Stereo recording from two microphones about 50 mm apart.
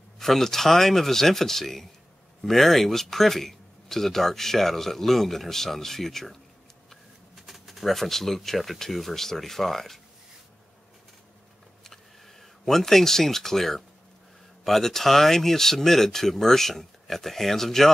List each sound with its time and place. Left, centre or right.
0.2 s speech: centre
11.8 s a sound: centre
14.6 s speech: centre